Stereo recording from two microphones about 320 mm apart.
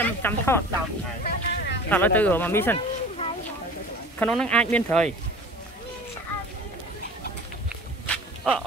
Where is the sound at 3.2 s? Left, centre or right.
Centre.